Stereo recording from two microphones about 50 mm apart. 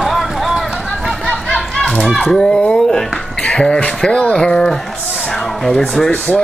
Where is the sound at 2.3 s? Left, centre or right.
Centre.